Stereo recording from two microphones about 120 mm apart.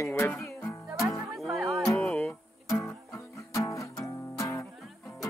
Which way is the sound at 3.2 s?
25° left (ahead or behind).